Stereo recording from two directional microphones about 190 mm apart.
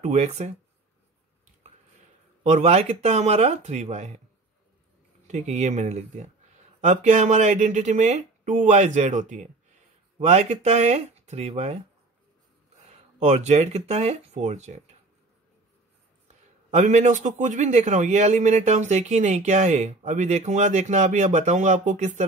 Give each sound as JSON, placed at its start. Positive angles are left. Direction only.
{"t": 0.0, "sound": "a man's voice", "side_deg": -35}
{"t": 2.4, "sound": "a man's voice", "side_deg": -35}
{"t": 5.2, "sound": "a man's voice", "side_deg": -35}
{"t": 13.2, "sound": "a man's voice", "side_deg": -35}
{"t": 16.7, "sound": "a man's voice", "side_deg": -35}